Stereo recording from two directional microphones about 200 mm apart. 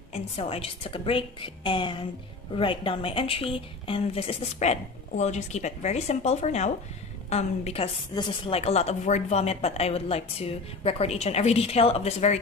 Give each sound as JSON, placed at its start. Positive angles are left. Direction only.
{"t": 0.1, "sound": "a woman's voice", "side_deg": 30}